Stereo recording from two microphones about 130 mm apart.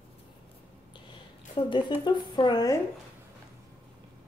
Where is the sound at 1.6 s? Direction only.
35° left (ahead or behind).